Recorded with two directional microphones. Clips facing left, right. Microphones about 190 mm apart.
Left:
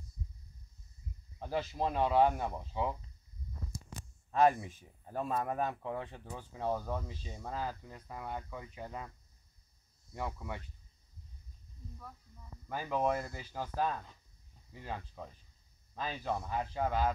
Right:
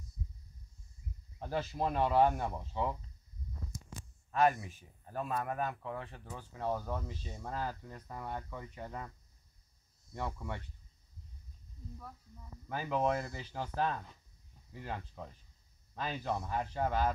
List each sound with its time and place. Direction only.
1.5 s speech: 10° left (ahead or behind)
4.3 s speech: 25° left (ahead or behind)
10.1 s speech: 5° left (ahead or behind)
12.9 s speech: 5° left (ahead or behind)
15.0 s speech: centre (ahead or behind)